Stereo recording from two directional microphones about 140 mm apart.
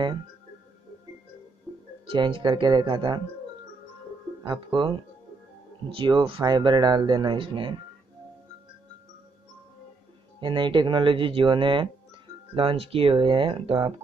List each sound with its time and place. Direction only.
2.0 s speech: 35° right (ahead or behind)
4.4 s speech: 35° right (ahead or behind)
10.4 s speech: 35° right (ahead or behind)